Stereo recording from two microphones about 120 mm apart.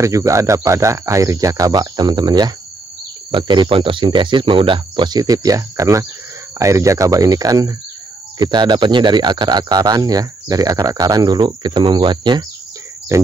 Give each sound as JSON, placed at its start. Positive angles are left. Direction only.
{"t": 0.0, "sound": "speech", "side_deg": -25}
{"t": 13.1, "sound": "speech", "side_deg": -25}